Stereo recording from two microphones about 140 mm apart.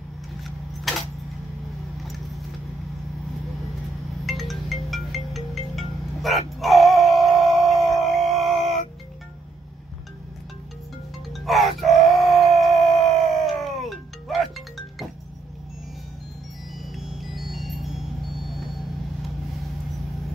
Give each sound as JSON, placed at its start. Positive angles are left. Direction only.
{"t": 0.9, "sound": "a sound", "side_deg": 0}
{"t": 4.3, "sound": "music", "side_deg": 0}
{"t": 7.6, "sound": "a sound", "side_deg": 0}
{"t": 8.5, "sound": "music", "side_deg": -45}
{"t": 11.3, "sound": "music", "side_deg": 0}
{"t": 16.9, "sound": "music", "side_deg": 0}